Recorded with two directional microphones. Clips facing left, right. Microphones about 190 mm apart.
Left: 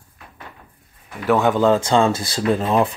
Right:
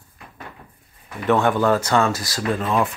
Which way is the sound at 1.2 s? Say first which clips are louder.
Left 2 dB; 15° left (ahead or behind).